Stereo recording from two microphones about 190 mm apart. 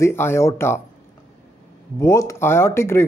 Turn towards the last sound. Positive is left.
turn(degrees=15)  # may be behind; listen again after turning